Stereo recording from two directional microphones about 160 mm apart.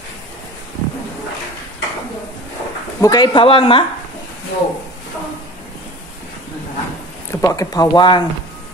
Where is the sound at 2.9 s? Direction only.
25° left (ahead or behind).